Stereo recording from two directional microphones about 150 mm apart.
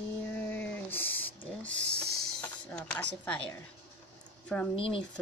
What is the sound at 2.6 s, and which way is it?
Speech, 10° left (ahead or behind).